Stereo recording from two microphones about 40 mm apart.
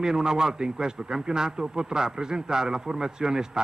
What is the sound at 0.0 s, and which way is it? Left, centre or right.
A man's voice, centre.